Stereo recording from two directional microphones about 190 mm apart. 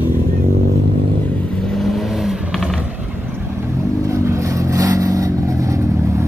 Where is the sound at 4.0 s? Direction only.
15° right (ahead or behind).